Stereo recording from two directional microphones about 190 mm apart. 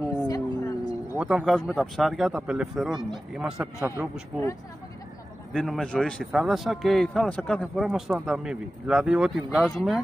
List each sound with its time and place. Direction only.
0.3 s music: 20° left (ahead or behind)
1.1 s a man's voice: 5° right (ahead or behind)
5.5 s a man's voice: centre (ahead or behind)